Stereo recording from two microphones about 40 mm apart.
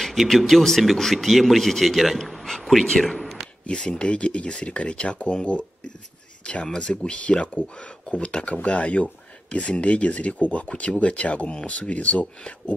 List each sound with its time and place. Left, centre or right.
0.0 s a man's voice: centre
3.6 s speech: centre
4.1 s speech: left
8.6 s speech: left